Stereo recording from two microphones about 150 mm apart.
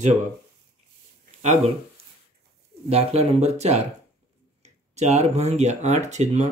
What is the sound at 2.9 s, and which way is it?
Speech, 45° right (ahead or behind).